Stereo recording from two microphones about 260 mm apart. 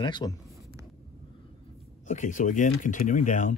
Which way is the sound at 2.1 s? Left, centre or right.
Left.